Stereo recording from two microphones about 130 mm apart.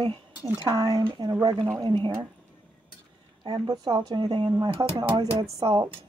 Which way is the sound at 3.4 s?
30° right (ahead or behind).